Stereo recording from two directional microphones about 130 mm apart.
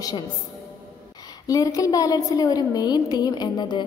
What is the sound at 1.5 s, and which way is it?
A woman's voice, 25° left (ahead or behind).